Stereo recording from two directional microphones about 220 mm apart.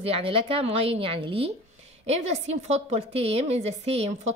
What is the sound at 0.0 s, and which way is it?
A woman's voice, 25° right (ahead or behind).